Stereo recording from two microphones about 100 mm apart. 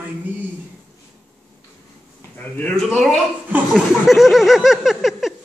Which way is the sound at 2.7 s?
5° left (ahead or behind).